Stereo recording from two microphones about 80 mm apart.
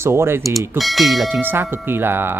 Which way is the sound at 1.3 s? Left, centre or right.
Right.